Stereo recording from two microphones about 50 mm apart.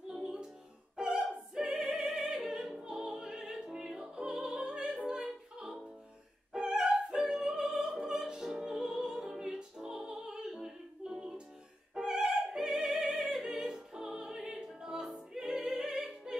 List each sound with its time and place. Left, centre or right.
0.1 s music: centre
1.8 s opera: right
2.1 s opera: centre
11.9 s music: centre
13.3 s opera: centre
15.3 s music: centre
15.6 s opera: centre